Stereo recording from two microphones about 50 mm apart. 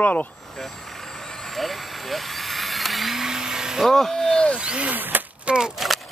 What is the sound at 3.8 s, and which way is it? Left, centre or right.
Speech, centre.